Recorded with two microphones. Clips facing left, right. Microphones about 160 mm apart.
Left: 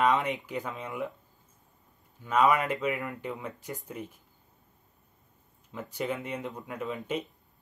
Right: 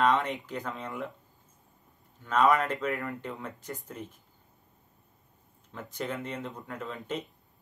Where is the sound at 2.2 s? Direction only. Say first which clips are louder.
Even; 10° left (ahead or behind).